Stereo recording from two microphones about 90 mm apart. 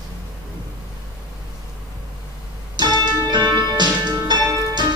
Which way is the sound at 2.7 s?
55° right (ahead or behind).